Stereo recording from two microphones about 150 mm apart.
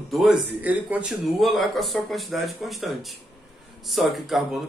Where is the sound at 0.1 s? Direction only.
Centre (ahead or behind).